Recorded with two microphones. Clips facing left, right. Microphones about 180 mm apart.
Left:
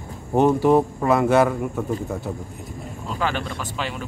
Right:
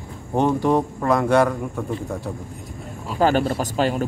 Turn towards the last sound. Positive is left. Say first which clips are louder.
# right 8 dB
turn(degrees=-40)  # may be behind; listen again after turning